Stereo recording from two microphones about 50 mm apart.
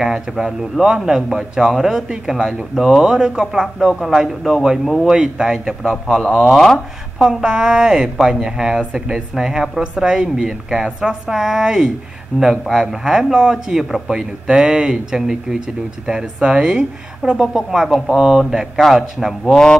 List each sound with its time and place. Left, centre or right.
0.0 s a woman's voice: centre
3.9 s a woman's voice: centre
6.5 s speech: centre
7.2 s a woman's voice: centre
19.5 s speech: centre